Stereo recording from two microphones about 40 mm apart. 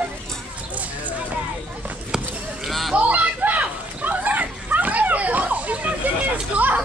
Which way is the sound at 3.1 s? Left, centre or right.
Right.